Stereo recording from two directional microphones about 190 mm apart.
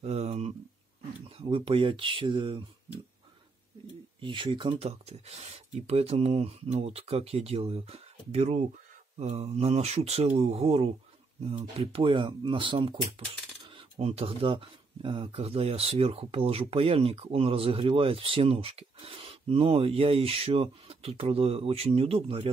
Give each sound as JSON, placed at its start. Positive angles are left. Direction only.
{"t": 0.0, "sound": "a sound", "side_deg": -35}
{"t": 1.4, "sound": "speech", "side_deg": -25}
{"t": 4.2, "sound": "speech", "side_deg": -25}